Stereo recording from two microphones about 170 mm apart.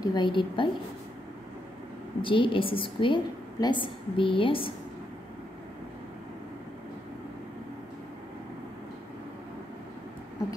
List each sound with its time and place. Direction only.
0.0 s a woman's voice: 25° left (ahead or behind)
2.2 s a woman's voice: 30° left (ahead or behind)